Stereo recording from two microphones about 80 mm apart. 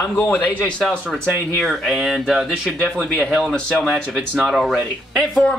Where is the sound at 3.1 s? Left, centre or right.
Centre.